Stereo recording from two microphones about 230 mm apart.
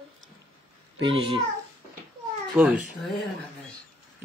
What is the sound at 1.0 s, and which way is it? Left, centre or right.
Speech, right.